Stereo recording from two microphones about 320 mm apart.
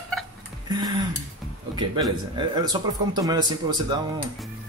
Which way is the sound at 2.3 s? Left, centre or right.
Centre.